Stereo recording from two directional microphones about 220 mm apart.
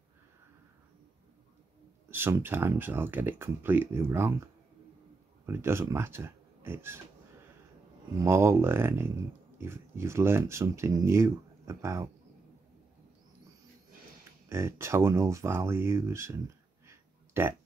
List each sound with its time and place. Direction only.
2.0 s speech: 10° right (ahead or behind)
5.5 s speech: 10° right (ahead or behind)
8.2 s speech: 10° right (ahead or behind)
14.5 s speech: 10° right (ahead or behind)
16.8 s a sound: 10° right (ahead or behind)